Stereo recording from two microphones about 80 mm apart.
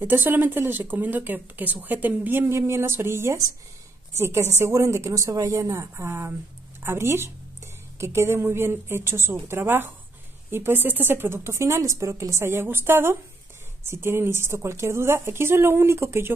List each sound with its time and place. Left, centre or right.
0.0 s a woman's voice: right